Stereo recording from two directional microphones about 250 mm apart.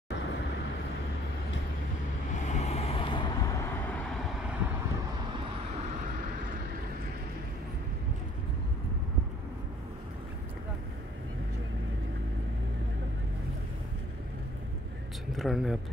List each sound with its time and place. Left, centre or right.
2.4 s vehicle: left; by 4.6 s centre
15.3 s speech: centre